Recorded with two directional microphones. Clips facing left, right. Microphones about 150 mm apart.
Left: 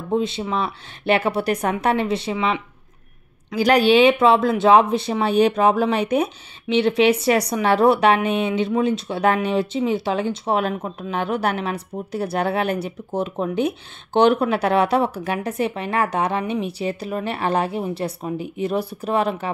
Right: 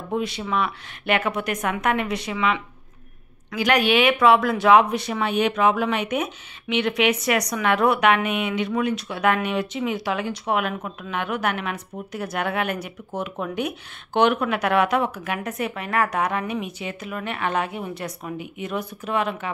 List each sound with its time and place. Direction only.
0.1 s a woman's voice: 25° left (ahead or behind)